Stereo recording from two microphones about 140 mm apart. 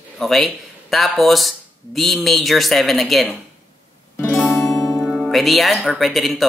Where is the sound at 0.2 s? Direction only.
Centre (ahead or behind).